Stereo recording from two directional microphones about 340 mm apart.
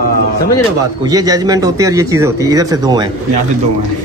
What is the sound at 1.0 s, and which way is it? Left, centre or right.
Speech, centre.